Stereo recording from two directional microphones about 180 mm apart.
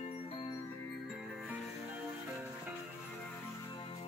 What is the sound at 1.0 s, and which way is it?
Music, centre (ahead or behind).